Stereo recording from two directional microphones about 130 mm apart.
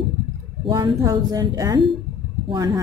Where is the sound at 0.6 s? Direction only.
35° right (ahead or behind).